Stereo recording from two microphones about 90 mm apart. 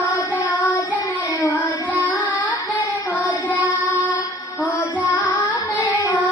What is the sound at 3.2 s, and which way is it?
Music, 15° left (ahead or behind).